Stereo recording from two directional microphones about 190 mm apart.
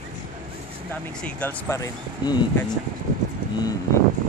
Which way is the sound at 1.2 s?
10° left (ahead or behind).